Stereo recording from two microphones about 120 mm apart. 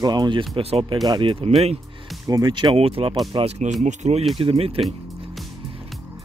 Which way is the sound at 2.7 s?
50° right (ahead or behind).